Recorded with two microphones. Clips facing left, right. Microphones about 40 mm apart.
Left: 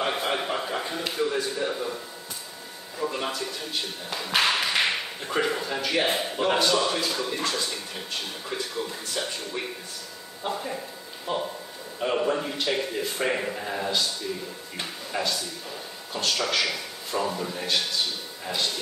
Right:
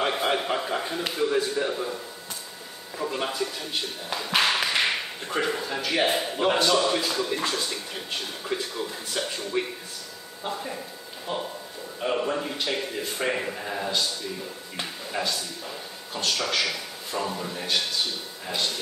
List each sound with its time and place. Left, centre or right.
0.5 s a man's voice: centre
3.0 s speech: centre
10.4 s speech: centre